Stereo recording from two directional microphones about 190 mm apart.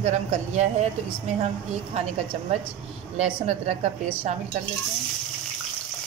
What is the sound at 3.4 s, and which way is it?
Speech, 35° right (ahead or behind).